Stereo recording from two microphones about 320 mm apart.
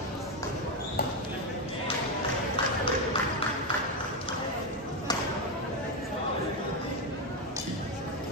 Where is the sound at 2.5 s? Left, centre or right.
Centre.